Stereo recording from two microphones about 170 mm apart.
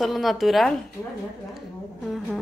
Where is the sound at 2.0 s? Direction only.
Centre (ahead or behind).